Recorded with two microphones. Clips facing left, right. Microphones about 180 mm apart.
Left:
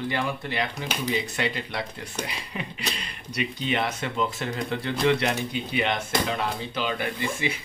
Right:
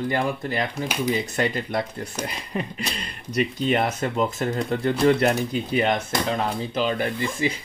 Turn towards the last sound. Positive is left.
turn(degrees=-40)  # may be behind; listen again after turning